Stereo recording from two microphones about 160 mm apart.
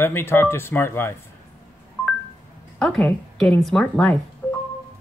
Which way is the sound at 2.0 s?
5° left (ahead or behind).